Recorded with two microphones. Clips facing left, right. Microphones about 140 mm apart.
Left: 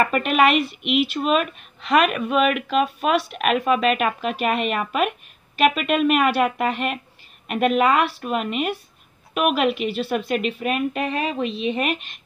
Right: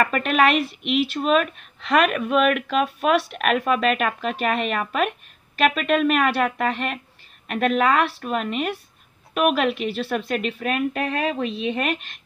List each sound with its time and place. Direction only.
0.0 s speech: 5° left (ahead or behind)